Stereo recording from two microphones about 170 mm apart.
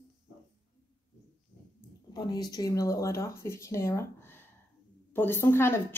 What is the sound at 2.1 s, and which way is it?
Speech, 20° left (ahead or behind).